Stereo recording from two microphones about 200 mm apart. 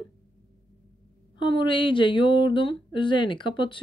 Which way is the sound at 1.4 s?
25° left (ahead or behind).